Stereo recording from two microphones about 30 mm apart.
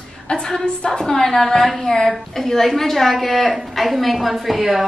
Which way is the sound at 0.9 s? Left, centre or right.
Centre.